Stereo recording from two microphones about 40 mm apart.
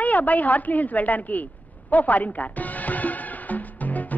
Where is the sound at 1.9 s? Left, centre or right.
Left.